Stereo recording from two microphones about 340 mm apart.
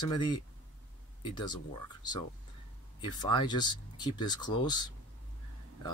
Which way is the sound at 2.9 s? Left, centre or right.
Centre.